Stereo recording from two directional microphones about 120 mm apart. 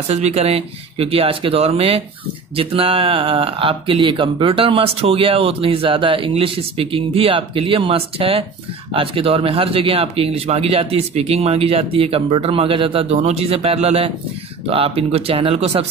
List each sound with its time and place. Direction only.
0.1 s speech: 60° right (ahead or behind)
13.1 s speech: 60° right (ahead or behind)